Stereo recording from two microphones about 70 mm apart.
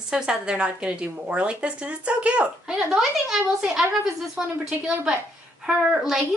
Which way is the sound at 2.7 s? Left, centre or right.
Centre.